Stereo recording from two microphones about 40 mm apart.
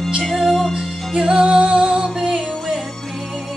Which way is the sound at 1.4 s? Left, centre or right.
Right.